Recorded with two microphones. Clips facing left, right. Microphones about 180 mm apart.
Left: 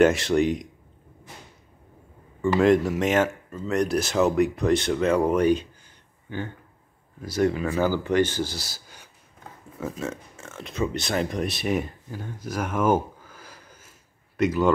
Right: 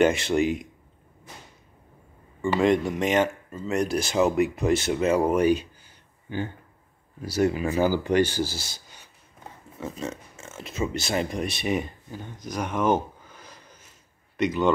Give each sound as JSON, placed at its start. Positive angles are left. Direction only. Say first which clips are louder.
{"t": 0.0, "sound": "speech", "louder": "left 2 dB", "side_deg": 0}
{"t": 2.4, "sound": "speech", "louder": "left 2 dB", "side_deg": 0}
{"t": 7.2, "sound": "speech", "louder": "even", "side_deg": -10}